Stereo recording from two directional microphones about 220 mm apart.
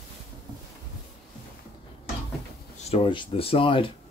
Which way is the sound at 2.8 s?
25° left (ahead or behind).